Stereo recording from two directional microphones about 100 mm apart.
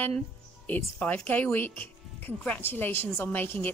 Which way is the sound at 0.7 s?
15° left (ahead or behind).